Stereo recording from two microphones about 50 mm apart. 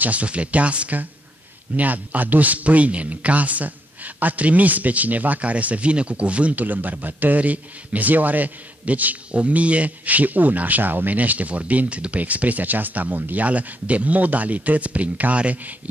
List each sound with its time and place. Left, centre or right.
0.0 s speech: right